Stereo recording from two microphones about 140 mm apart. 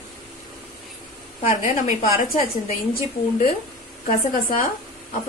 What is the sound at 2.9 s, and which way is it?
Speech, 90° left.